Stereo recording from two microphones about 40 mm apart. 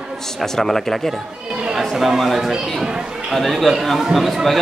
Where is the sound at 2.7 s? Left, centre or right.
Centre.